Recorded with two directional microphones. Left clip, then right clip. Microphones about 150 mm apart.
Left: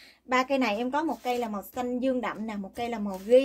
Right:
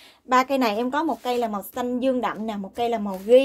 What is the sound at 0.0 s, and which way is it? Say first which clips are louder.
A woman's voice: right 6 dB; 30° right (ahead or behind).